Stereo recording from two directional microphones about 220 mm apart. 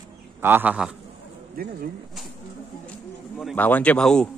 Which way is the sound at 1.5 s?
40° right (ahead or behind).